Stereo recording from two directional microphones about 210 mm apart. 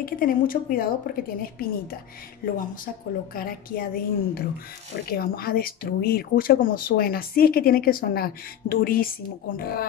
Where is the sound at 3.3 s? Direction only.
45° left (ahead or behind).